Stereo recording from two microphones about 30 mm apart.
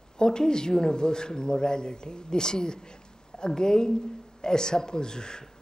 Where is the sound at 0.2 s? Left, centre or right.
Left.